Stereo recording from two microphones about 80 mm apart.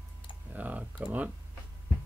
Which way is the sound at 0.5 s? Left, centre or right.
Centre.